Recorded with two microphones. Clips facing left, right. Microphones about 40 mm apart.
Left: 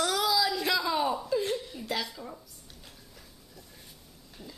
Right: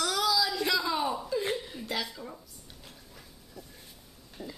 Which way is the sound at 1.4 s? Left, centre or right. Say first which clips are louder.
Left 1 dB; centre.